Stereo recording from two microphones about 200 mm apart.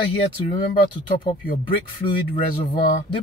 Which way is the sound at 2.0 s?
25° left (ahead or behind).